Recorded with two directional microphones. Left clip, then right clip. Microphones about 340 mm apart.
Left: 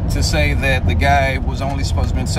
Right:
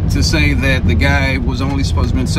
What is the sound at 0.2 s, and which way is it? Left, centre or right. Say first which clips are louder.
Speech: right 3 dB; centre.